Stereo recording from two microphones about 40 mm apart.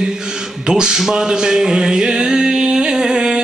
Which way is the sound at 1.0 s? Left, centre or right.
Centre.